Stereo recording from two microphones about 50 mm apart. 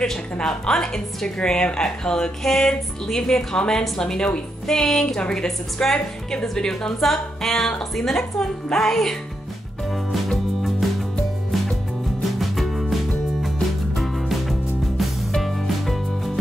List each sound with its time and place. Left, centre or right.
0.0 s a woman's voice: centre
10.3 s music: centre
12.2 s music: centre
13.9 s music: centre